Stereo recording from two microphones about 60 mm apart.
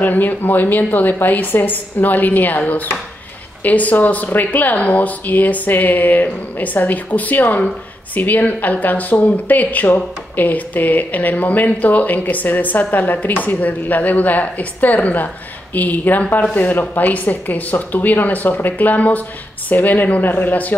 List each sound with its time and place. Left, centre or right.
0.0 s a woman's voice: left